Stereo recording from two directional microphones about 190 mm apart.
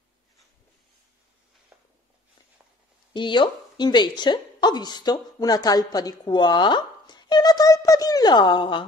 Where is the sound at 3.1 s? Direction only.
25° left (ahead or behind).